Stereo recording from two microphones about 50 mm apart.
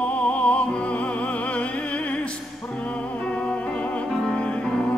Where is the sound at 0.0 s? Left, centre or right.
Left.